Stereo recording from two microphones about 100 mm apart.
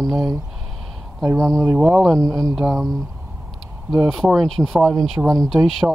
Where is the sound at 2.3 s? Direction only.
35° right (ahead or behind).